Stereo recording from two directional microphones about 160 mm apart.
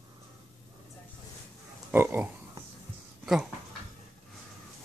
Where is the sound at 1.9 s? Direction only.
15° right (ahead or behind).